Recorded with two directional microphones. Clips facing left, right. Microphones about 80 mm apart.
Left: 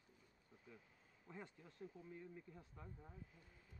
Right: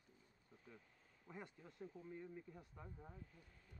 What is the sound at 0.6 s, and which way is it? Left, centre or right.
Speech, centre.